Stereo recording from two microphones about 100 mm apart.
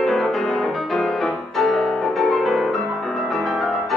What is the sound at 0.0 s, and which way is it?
Music, centre (ahead or behind).